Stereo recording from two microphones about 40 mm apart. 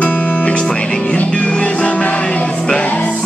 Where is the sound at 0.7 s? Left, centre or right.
Left.